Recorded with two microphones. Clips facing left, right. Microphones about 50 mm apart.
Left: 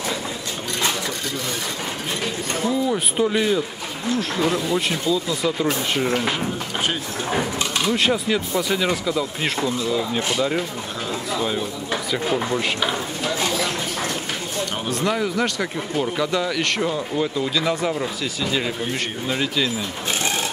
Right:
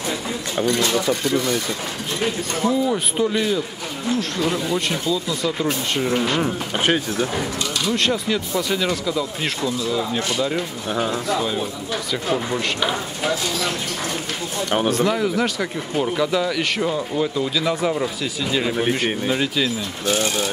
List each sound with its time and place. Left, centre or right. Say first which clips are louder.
2.6 s speech: right 2 dB; centre
3.3 s speech: left 1 dB; centre
7.9 s speech: even; centre
12.1 s speech: even; centre
14.9 s speech: even; centre
18.8 s speech: right 6 dB; right
19.3 s speech: right 1 dB; centre